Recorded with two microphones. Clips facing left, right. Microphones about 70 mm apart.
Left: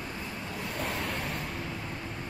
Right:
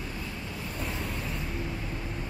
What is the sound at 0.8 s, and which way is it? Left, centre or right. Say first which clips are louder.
Waves: left 2 dB; left.